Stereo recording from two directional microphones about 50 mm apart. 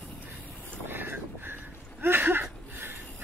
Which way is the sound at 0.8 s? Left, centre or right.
Right.